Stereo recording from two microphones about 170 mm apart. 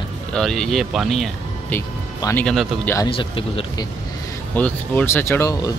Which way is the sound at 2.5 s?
5° left (ahead or behind).